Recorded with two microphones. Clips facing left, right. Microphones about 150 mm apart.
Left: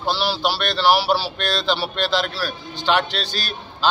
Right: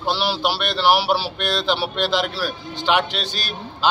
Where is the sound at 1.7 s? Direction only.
15° right (ahead or behind).